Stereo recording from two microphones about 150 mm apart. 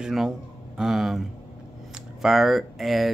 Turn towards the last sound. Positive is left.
turn(degrees=0)  # may be behind; listen again after turning